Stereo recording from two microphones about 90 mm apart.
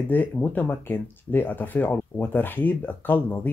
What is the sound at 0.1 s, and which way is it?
Speech, 20° left (ahead or behind).